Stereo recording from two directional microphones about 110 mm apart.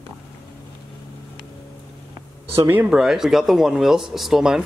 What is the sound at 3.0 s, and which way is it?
Speech, 5° right (ahead or behind).